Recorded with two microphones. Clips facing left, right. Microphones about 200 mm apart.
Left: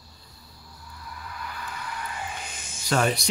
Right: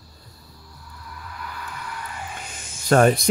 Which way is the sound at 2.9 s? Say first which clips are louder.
Right 8 dB; 50° right (ahead or behind).